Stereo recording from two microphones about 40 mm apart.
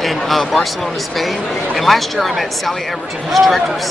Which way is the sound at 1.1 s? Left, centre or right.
Centre.